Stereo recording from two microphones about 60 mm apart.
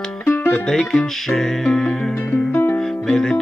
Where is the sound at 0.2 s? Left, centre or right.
Left.